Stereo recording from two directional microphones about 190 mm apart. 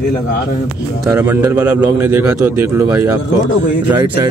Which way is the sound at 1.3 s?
10° right (ahead or behind).